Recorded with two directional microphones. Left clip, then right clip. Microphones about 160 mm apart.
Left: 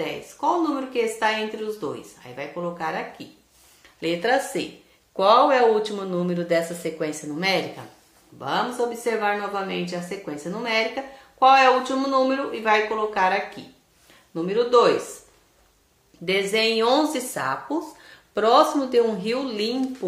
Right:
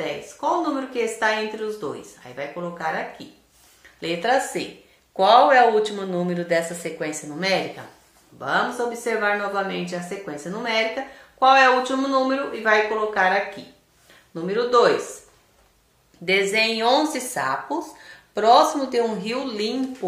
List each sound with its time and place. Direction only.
0.0 s speech: 15° left (ahead or behind)
16.3 s speech: 30° left (ahead or behind)